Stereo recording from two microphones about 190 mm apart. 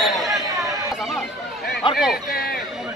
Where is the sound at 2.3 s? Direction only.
55° left (ahead or behind).